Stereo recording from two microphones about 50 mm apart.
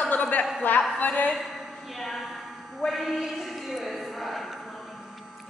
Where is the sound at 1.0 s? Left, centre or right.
Left.